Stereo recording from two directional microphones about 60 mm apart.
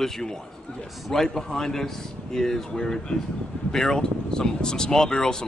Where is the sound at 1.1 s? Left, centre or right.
Centre.